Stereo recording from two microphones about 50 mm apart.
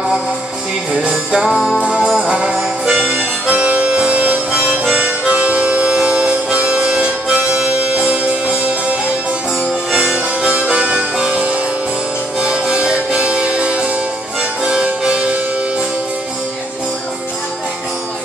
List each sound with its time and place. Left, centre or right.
1.1 s music: centre
1.9 s harmonica: centre
8.0 s music: right
9.9 s music: centre
10.5 s music: right
14.6 s harpsichord: centre